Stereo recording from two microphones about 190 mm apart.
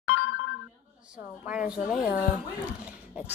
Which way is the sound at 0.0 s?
90° left.